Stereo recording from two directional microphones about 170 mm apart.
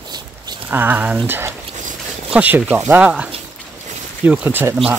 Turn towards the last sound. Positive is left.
turn(degrees=-10)  # may be behind; listen again after turning